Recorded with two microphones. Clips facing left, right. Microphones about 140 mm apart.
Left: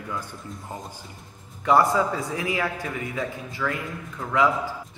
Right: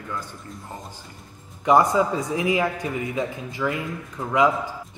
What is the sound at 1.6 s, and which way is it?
A man's voice, 20° right (ahead or behind).